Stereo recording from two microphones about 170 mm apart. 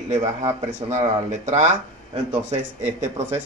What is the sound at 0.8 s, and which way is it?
Speech, 30° right (ahead or behind).